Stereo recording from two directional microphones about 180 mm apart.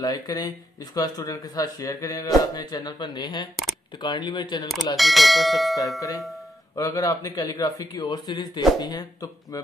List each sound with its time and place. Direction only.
0.0 s speech: 20° left (ahead or behind)
4.9 s speech: centre (ahead or behind)
5.9 s speech: 20° left (ahead or behind)